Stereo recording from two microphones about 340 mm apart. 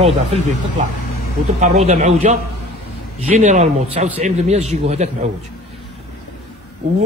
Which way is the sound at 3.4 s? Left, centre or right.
Right.